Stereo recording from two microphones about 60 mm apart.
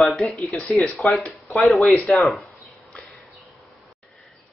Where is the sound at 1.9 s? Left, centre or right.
Left.